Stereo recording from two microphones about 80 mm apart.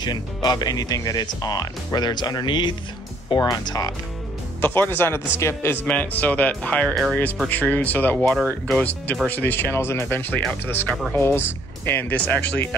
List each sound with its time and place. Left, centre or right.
0.0 s speech: left
3.3 s speech: left
4.6 s a man's voice: left
5.9 s speech: centre